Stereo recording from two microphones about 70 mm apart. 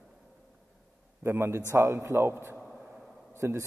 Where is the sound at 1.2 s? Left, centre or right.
Right.